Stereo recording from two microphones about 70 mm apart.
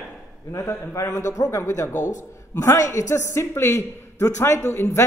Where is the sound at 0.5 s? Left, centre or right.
Left.